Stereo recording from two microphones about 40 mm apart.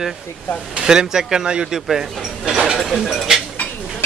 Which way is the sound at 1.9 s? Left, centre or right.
Centre.